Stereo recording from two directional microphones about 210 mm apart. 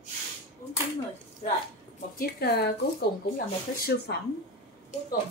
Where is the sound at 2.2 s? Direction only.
50° left (ahead or behind).